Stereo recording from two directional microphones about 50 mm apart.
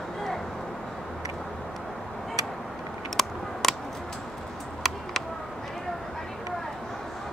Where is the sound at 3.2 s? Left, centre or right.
Centre.